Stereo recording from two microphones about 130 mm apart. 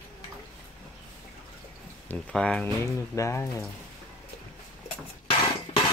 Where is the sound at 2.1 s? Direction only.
10° left (ahead or behind).